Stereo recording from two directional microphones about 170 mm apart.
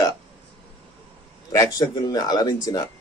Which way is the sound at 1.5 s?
20° left (ahead or behind).